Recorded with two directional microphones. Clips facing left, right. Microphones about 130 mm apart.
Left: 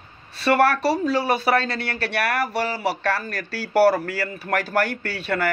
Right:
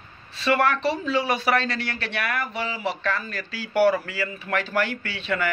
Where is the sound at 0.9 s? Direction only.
35° left (ahead or behind).